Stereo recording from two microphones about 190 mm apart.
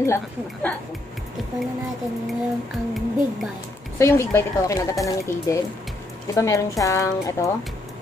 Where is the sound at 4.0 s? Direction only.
15° left (ahead or behind).